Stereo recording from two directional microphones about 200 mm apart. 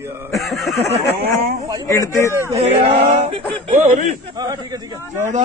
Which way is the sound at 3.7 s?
40° right (ahead or behind).